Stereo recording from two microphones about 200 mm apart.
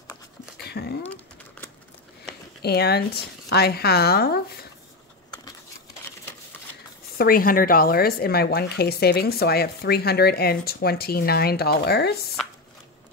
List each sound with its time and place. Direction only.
0.6 s a sound: 55° left (ahead or behind)
1.0 s typing: 10° left (ahead or behind)
2.6 s speech: 55° left (ahead or behind)
7.2 s speech: 45° left (ahead or behind)